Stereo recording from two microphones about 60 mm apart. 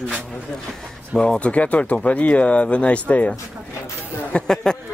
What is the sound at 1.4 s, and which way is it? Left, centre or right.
Speech, left.